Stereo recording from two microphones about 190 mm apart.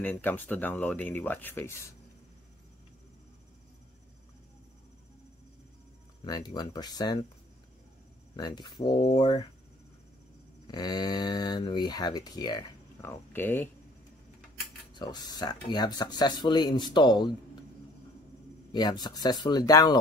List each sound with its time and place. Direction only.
0.0 s speech: 10° left (ahead or behind)
6.2 s speech: 20° left (ahead or behind)
8.4 s speech: 20° left (ahead or behind)
10.7 s speech: 20° left (ahead or behind)
15.0 s speech: 20° left (ahead or behind)
18.7 s speech: 20° left (ahead or behind)